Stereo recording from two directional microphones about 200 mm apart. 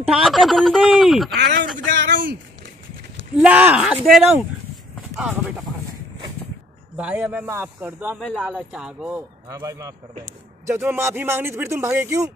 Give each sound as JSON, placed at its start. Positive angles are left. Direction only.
{"t": 0.1, "sound": "speech", "side_deg": 0}
{"t": 1.3, "sound": "a sound", "side_deg": -55}
{"t": 3.3, "sound": "speech", "side_deg": -5}
{"t": 7.0, "sound": "speech", "side_deg": -5}
{"t": 9.5, "sound": "speech", "side_deg": -15}